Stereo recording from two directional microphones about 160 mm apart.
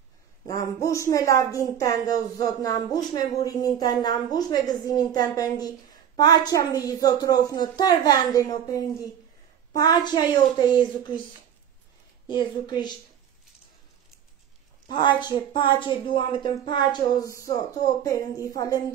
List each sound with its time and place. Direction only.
0.5 s a woman's voice: 20° left (ahead or behind)
12.3 s a woman's voice: 25° left (ahead or behind)
14.9 s a woman's voice: 30° left (ahead or behind)